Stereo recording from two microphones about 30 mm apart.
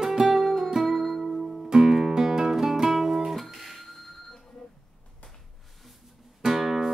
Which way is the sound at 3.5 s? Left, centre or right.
Centre.